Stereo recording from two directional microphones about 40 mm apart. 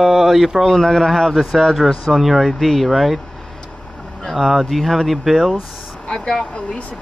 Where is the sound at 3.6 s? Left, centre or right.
Left.